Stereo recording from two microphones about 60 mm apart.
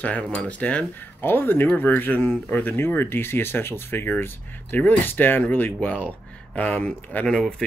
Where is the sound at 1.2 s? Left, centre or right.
Left.